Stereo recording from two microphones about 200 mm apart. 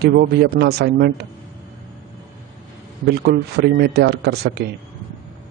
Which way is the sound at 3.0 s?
55° right (ahead or behind).